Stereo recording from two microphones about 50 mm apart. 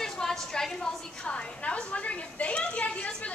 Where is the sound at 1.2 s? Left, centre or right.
Left.